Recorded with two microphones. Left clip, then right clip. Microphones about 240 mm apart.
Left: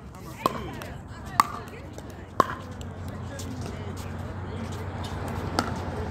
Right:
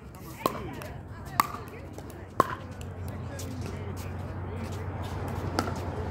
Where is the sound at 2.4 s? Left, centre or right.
Centre.